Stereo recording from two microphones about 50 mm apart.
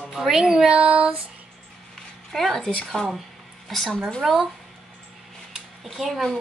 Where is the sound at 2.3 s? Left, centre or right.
Centre.